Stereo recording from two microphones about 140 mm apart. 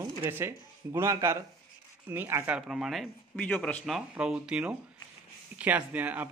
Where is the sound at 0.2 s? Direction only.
15° right (ahead or behind).